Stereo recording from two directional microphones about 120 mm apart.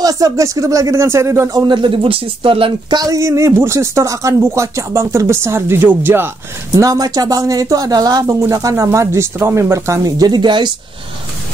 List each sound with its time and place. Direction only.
0.0 s speech: 30° right (ahead or behind)
1.7 s speech: 45° right (ahead or behind)
3.0 s speech: 30° right (ahead or behind)
6.7 s speech: 30° right (ahead or behind)